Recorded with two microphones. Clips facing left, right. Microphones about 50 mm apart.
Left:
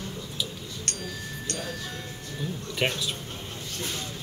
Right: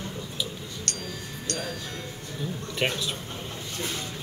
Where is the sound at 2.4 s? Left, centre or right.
Centre.